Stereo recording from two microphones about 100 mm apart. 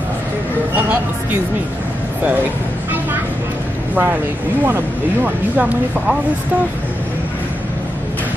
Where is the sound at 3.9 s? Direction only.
20° right (ahead or behind).